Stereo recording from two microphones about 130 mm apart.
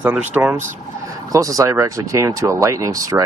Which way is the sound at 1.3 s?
25° right (ahead or behind).